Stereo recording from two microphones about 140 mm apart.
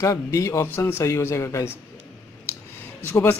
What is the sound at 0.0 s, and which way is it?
A man's voice, 20° left (ahead or behind).